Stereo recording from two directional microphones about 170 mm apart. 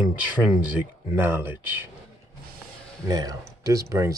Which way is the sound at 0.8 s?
10° right (ahead or behind).